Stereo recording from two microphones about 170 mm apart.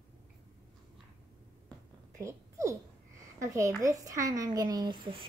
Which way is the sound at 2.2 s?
20° right (ahead or behind).